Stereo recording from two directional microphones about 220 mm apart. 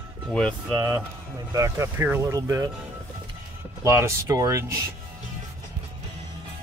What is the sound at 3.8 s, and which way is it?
Speech, 10° right (ahead or behind).